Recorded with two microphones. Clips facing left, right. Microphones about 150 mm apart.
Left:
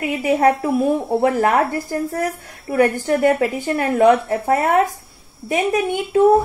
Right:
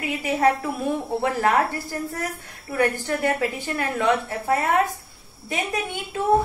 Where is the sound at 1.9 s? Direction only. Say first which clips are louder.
Left 7 dB; 45° left (ahead or behind).